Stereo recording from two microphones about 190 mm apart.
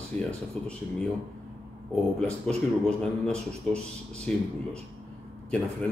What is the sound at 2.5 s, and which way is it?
A man's voice, 5° left (ahead or behind).